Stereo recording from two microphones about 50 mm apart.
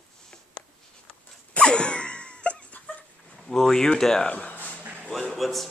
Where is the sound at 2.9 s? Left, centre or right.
Left.